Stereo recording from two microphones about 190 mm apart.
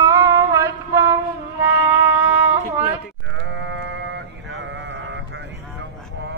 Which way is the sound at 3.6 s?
70° right (ahead or behind).